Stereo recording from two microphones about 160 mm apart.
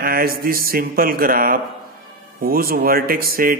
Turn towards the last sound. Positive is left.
turn(degrees=-65)  # may be behind; listen again after turning